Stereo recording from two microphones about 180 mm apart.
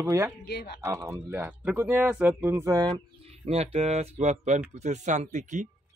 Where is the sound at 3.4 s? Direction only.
35° right (ahead or behind).